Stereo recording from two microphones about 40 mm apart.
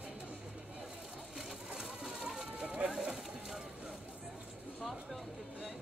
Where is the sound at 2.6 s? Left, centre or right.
Right.